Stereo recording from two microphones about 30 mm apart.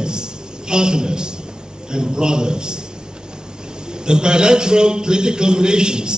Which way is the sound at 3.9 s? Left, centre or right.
Right.